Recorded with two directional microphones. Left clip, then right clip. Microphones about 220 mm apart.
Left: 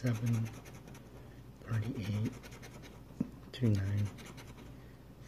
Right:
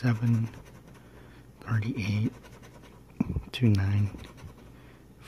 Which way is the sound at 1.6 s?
35° right (ahead or behind).